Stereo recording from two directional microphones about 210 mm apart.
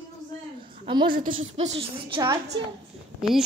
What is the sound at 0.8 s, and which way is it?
Speech, 25° right (ahead or behind).